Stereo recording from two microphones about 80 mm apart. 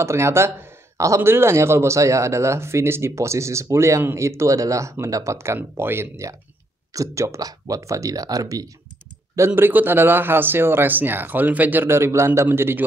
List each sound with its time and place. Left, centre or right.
0.0 s speech: right
9.6 s speech: right
12.4 s speech: right